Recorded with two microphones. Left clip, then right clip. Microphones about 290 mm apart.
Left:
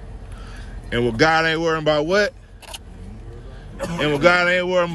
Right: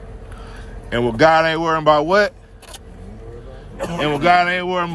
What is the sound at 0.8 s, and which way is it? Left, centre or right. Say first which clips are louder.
A man's voice: right 4 dB; centre.